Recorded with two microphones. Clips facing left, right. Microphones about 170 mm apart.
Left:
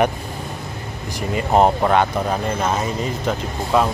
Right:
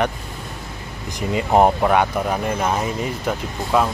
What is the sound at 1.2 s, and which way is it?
Speech, 15° right (ahead or behind).